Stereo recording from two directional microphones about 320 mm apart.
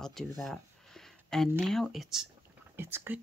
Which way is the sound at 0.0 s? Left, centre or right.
Centre.